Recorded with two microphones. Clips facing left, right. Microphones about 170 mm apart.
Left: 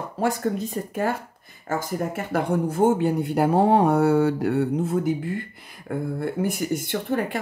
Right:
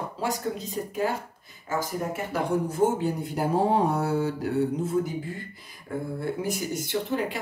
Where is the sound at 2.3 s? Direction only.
60° left (ahead or behind).